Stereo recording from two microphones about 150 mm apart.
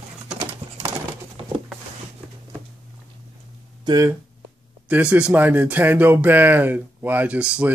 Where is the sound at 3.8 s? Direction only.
25° right (ahead or behind).